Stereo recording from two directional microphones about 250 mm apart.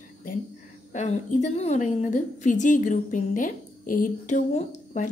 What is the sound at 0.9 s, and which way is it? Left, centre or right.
A woman's voice, left.